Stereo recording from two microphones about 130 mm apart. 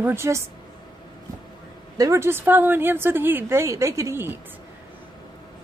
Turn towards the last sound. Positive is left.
turn(degrees=-15)  # may be behind; listen again after turning